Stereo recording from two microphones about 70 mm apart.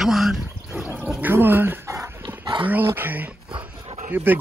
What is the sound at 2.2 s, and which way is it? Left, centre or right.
Dog, right.